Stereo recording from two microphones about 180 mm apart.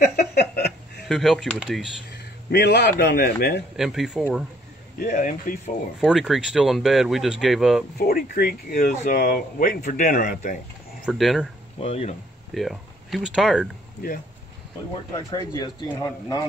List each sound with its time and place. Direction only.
0.0 s a sound: 60° left (ahead or behind)
1.0 s speech: centre (ahead or behind)
2.5 s a man's voice: 65° left (ahead or behind)
3.7 s speech: centre (ahead or behind)
4.9 s speech: 55° left (ahead or behind)
5.9 s speech: centre (ahead or behind)
8.0 s a man's voice: 55° left (ahead or behind)
11.1 s speech: centre (ahead or behind)
11.8 s speech: 35° left (ahead or behind)
12.5 s speech: centre (ahead or behind)
15.3 s speech: 20° left (ahead or behind)